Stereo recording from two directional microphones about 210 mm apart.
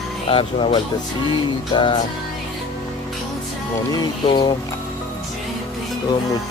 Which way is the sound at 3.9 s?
20° left (ahead or behind).